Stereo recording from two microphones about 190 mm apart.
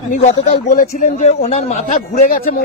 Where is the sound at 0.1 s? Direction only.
35° left (ahead or behind).